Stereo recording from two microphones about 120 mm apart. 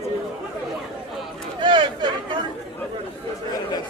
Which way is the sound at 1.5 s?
45° right (ahead or behind).